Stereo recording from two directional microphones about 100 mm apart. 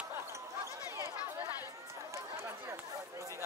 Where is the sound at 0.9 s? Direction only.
30° right (ahead or behind).